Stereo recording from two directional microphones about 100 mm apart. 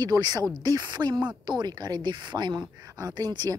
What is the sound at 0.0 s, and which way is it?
Speech, 40° right (ahead or behind).